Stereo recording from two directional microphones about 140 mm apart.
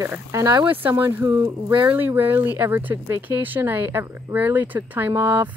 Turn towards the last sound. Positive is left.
turn(degrees=-15)  # may be behind; listen again after turning